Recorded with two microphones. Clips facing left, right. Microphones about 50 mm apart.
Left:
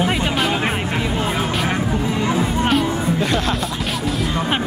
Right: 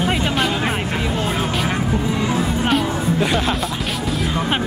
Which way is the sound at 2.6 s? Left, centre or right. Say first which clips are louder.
Left 1 dB; centre.